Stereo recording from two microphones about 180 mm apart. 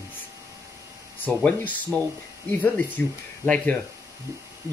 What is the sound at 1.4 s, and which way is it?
Speech, 5° left (ahead or behind).